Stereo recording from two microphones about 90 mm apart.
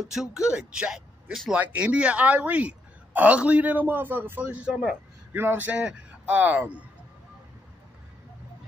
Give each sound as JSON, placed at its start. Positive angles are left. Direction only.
{"t": 0.0, "sound": "a woman's voice", "side_deg": -5}